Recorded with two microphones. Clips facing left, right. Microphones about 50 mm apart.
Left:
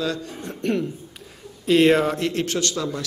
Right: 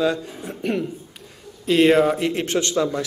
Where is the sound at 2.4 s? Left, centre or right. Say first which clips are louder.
Right 4 dB; right.